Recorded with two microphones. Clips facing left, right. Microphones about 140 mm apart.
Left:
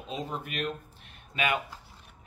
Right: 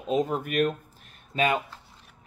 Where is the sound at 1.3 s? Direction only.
35° right (ahead or behind).